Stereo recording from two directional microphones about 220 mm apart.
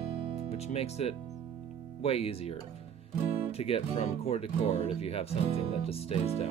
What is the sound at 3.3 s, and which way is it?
Music, 25° right (ahead or behind).